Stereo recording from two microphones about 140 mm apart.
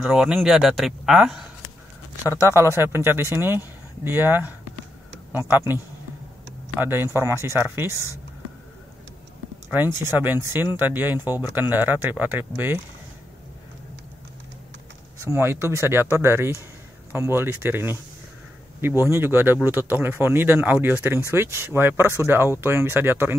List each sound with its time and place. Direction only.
0.0 s speech: 5° right (ahead or behind)
2.2 s speech: 20° right (ahead or behind)
6.8 s speech: 15° right (ahead or behind)
9.7 s speech: 15° right (ahead or behind)
15.1 s speech: 20° right (ahead or behind)